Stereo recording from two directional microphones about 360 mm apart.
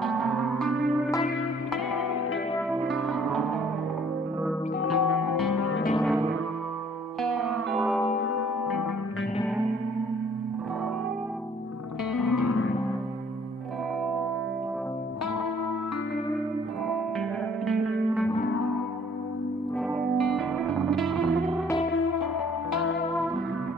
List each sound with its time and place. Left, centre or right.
0.0 s music: centre
2.7 s music: centre
4.7 s music: left
5.0 s music: left
7.2 s music: centre
12.1 s music: left
20.2 s music: centre
22.2 s music: left